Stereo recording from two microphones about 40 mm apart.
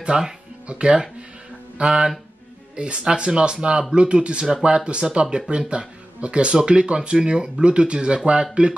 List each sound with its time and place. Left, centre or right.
0.1 s speech: centre